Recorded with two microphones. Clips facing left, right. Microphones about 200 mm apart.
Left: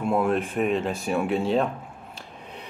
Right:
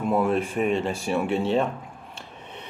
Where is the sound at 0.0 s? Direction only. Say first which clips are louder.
Even; centre (ahead or behind).